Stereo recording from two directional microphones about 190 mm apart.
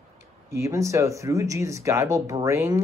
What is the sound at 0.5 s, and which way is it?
Speech, 15° right (ahead or behind).